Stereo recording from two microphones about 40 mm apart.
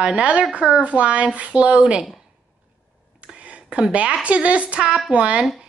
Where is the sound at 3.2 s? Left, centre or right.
Right.